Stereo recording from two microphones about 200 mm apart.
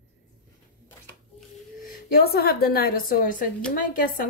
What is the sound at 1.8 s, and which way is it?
A woman's voice, 50° left (ahead or behind).